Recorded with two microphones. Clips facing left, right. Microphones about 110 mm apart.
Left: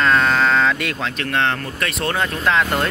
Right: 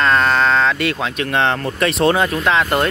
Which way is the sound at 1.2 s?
20° right (ahead or behind).